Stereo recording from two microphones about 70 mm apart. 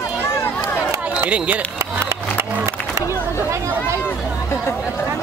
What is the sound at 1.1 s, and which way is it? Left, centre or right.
Speech, centre.